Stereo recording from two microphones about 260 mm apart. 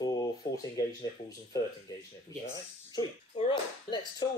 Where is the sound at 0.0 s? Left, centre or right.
Centre.